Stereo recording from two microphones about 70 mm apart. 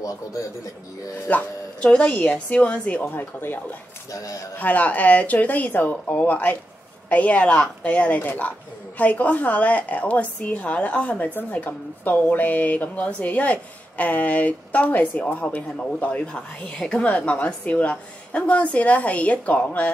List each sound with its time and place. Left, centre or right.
0.0 s a man's voice: left
1.3 s a woman's voice: left
4.1 s a man's voice: left
4.6 s a woman's voice: left